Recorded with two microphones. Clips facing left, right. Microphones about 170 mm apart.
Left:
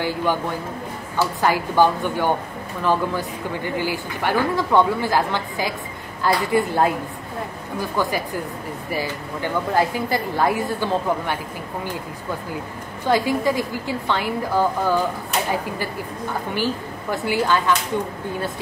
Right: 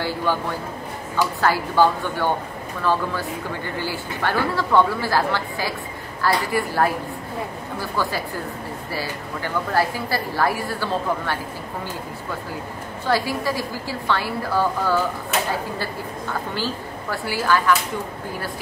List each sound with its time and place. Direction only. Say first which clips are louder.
0.0 s speech: left 1 dB; 15° left (ahead or behind)
1.4 s a woman's voice: left 1 dB; 15° left (ahead or behind)
13.0 s a woman's voice: left 3 dB; 20° left (ahead or behind)
16.5 s a woman's voice: left 3 dB; 20° left (ahead or behind)